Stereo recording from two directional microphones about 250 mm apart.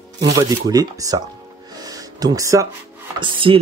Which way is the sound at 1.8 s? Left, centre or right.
Centre.